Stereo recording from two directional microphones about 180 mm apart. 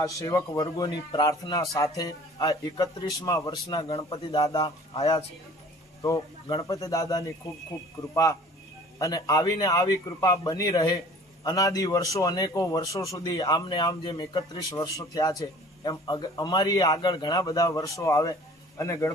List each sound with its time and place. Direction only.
0.0 s speech: 20° left (ahead or behind)